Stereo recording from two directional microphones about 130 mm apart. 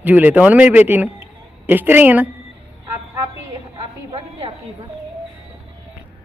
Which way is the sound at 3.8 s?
45° right (ahead or behind).